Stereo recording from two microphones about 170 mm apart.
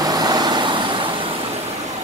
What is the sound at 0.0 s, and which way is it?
Vehicle, 25° right (ahead or behind).